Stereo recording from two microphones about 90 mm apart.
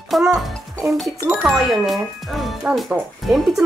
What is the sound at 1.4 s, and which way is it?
A woman's voice, centre (ahead or behind).